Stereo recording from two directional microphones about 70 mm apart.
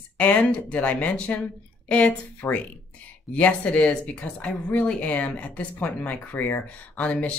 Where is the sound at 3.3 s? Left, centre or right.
Centre.